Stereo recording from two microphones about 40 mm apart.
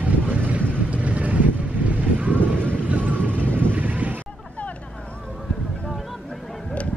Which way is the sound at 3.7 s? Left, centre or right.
Right.